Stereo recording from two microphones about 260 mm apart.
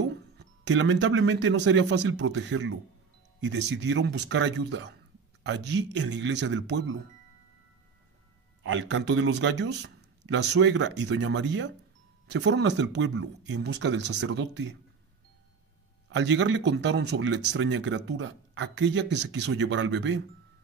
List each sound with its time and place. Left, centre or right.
0.4 s speech: right
8.6 s speech: right
16.1 s speech: right